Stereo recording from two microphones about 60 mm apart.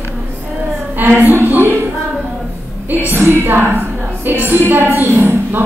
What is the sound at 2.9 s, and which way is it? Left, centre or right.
A woman's voice, right.